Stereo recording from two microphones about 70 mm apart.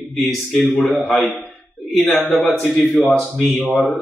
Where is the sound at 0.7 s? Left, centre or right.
Left.